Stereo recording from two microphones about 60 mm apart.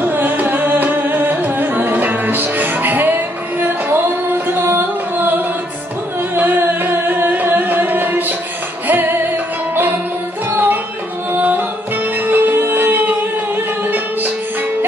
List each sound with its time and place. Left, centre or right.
0.0 s music: right
10.5 s music: right